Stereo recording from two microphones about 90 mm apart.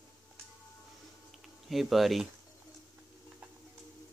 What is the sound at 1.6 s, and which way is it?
Speech, centre (ahead or behind).